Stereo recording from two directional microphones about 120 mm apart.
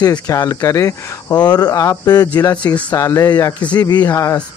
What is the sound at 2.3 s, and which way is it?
Speech, 15° left (ahead or behind).